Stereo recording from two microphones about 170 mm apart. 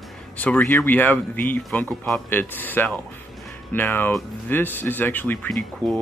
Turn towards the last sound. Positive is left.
turn(degrees=5)  # may be behind; listen again after turning